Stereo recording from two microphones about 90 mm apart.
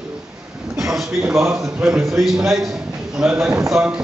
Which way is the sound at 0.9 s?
Centre (ahead or behind).